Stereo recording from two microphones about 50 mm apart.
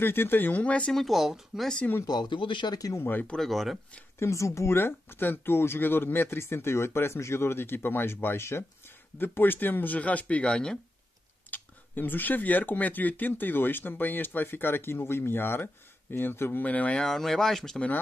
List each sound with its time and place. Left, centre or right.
0.0 s speech: left
0.6 s speech: left
0.9 s speech: centre
3.0 s speech: left
3.3 s speech: centre
4.2 s speech: left
4.7 s speech: left
9.2 s speech: left
9.9 s speech: left
11.5 s speech: left
16.6 s speech: left
16.9 s speech: centre